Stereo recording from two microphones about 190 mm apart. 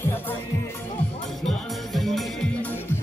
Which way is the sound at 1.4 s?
Centre (ahead or behind).